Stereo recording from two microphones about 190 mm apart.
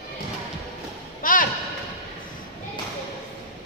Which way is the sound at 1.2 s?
45° left (ahead or behind).